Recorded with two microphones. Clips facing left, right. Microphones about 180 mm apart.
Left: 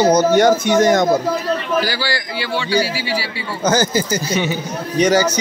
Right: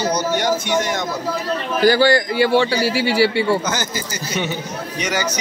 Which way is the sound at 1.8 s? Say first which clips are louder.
Right 9 dB; 50° right (ahead or behind).